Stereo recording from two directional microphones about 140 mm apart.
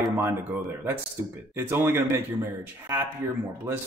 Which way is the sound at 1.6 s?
15° right (ahead or behind).